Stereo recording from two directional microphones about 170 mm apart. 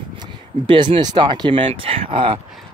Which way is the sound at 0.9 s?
30° right (ahead or behind).